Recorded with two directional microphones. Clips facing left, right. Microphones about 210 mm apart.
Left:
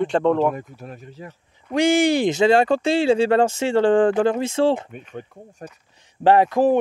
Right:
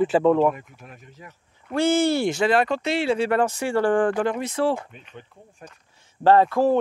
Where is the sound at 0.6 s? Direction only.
35° left (ahead or behind).